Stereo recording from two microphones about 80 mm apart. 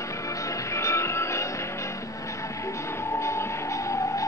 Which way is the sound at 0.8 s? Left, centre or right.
Left.